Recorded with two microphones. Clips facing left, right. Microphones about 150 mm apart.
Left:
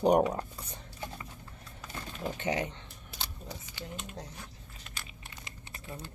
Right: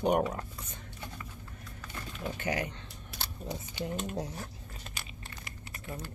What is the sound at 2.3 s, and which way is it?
Speech, 20° left (ahead or behind).